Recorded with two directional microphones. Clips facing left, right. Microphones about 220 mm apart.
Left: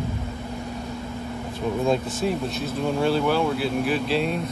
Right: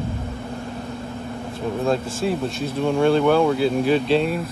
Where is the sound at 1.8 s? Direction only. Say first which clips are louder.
Right 2 dB; centre (ahead or behind).